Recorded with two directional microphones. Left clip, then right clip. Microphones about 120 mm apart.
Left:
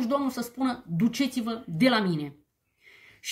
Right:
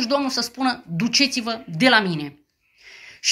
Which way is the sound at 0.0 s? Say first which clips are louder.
Right 6 dB; 40° left (ahead or behind).